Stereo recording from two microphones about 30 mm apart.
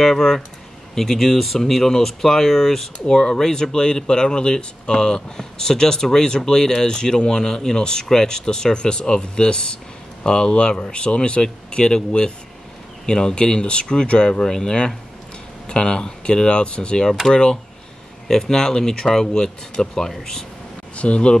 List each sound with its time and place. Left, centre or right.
0.0 s speech: centre; by 17.6 s left
18.3 s speech: centre
20.9 s speech: left